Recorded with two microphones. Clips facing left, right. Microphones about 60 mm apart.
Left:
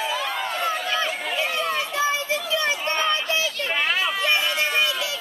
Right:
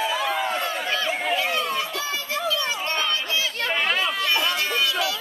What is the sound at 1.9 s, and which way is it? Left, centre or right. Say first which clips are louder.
Children playing: left 5 dB; left.